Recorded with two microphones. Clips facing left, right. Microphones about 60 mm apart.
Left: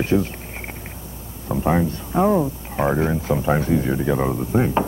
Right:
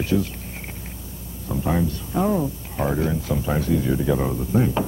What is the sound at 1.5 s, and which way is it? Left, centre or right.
Speech, left.